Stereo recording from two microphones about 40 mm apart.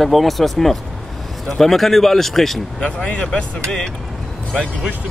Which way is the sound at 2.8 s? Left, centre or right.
Left.